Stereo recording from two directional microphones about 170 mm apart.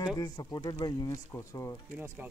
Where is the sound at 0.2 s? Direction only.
20° left (ahead or behind).